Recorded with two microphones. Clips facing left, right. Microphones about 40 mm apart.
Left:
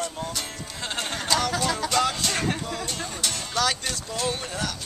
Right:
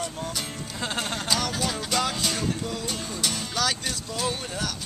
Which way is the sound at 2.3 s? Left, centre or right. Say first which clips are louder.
Left 2 dB; left.